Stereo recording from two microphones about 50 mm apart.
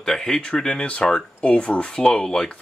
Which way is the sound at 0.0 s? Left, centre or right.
Centre.